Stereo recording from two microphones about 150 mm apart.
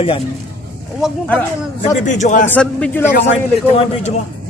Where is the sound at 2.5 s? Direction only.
10° left (ahead or behind).